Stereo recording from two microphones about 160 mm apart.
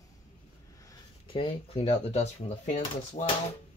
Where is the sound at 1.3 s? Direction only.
35° left (ahead or behind).